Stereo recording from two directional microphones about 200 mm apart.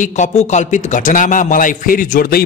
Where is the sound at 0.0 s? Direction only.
35° left (ahead or behind).